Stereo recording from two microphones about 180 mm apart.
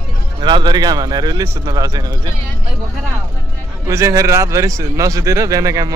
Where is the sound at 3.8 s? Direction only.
15° right (ahead or behind).